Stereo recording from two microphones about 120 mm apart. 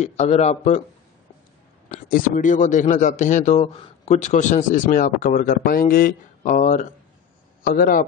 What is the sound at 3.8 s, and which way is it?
A man's voice, 60° left (ahead or behind).